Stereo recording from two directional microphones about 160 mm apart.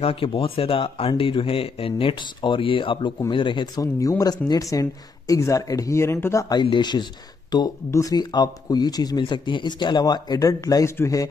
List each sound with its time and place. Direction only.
0.0 s speech: 35° left (ahead or behind); by 6.6 s 15° left (ahead or behind)
6.6 s speech: 30° left (ahead or behind)